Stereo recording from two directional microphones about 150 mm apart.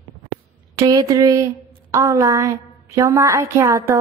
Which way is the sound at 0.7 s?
25° right (ahead or behind).